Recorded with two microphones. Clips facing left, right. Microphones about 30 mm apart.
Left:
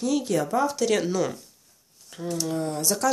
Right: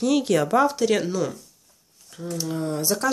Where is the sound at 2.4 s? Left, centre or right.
Centre.